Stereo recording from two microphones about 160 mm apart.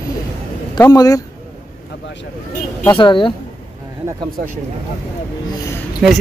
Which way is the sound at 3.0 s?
30° left (ahead or behind).